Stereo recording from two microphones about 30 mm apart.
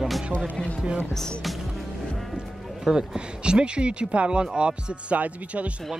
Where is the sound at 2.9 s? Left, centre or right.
Right.